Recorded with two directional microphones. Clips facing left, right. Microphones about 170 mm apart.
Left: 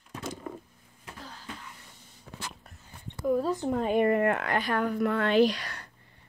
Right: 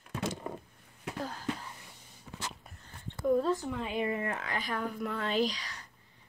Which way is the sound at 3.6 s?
45° left (ahead or behind).